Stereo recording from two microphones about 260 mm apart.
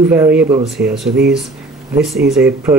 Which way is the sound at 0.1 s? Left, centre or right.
Centre.